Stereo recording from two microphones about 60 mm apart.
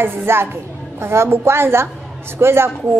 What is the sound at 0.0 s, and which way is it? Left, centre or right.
A child's voice, right.